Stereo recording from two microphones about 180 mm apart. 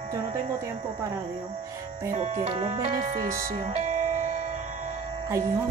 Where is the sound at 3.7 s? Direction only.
40° right (ahead or behind).